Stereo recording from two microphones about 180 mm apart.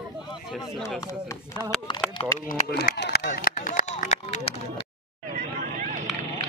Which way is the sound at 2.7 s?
65° left (ahead or behind).